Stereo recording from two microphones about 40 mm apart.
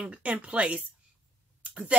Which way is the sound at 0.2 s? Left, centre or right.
Right.